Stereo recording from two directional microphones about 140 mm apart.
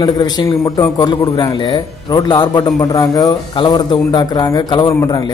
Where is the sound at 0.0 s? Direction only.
30° left (ahead or behind).